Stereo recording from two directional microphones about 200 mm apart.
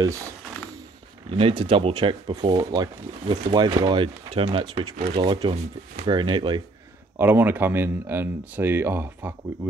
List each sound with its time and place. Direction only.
0.0 s speech: 15° right (ahead or behind)
1.3 s speech: 25° right (ahead or behind)
7.2 s speech: 10° right (ahead or behind)